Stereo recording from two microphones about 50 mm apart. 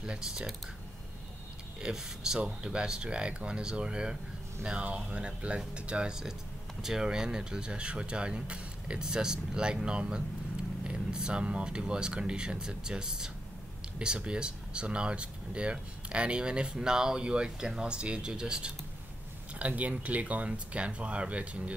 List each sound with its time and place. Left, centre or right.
0.0 s speech: centre
1.8 s speech: centre
6.8 s speech: centre
19.6 s speech: right